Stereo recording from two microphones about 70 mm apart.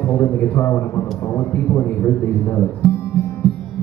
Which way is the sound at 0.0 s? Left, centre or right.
Left.